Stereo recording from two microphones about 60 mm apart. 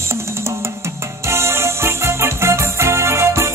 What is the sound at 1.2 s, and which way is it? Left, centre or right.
Music, right.